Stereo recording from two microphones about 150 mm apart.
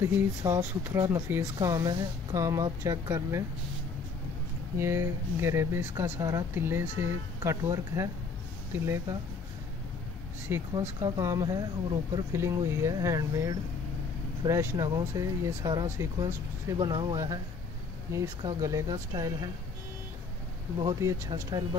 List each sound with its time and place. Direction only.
0.4 s speech: 15° right (ahead or behind)
4.7 s speech: 15° right (ahead or behind)
10.5 s speech: 20° right (ahead or behind)
20.8 s speech: 20° right (ahead or behind)